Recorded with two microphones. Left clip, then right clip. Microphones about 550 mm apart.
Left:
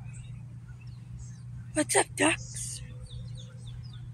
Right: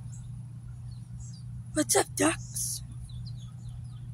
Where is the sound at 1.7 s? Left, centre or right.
Right.